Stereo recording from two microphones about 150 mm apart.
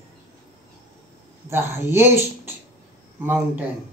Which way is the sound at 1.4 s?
15° right (ahead or behind).